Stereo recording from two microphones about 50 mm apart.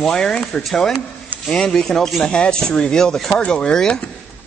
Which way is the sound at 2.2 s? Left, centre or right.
Centre.